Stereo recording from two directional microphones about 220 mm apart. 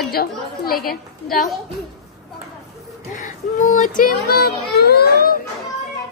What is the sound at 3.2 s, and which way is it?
A child's voice, 35° left (ahead or behind).